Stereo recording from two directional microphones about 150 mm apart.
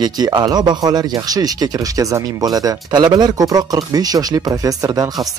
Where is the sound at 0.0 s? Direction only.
30° right (ahead or behind).